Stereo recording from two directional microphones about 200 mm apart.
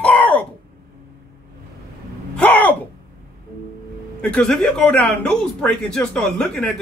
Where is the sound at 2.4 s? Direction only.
5° left (ahead or behind).